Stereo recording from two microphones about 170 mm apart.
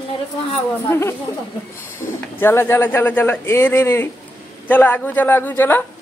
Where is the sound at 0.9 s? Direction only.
15° left (ahead or behind).